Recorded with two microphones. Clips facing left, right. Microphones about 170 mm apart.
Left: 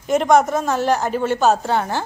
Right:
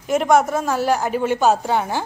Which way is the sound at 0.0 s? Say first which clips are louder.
Left 1 dB; 5° right (ahead or behind).